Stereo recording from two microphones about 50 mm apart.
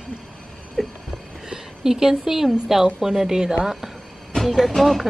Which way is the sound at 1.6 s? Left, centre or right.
Centre.